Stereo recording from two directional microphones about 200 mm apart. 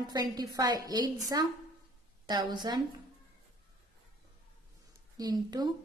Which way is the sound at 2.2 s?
20° right (ahead or behind).